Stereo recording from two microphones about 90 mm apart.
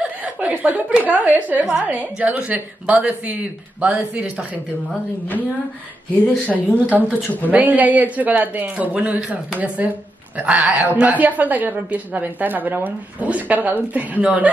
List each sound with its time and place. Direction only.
0.0 s a woman's voice: 15° right (ahead or behind)
6.2 s speech: 15° left (ahead or behind)
6.9 s a woman's voice: 15° right (ahead or behind)